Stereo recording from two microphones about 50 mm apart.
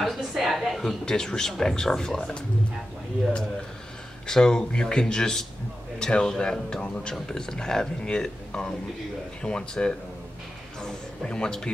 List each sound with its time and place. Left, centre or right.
0.0 s a sound: centre
1.0 s speech: centre
4.3 s speech: centre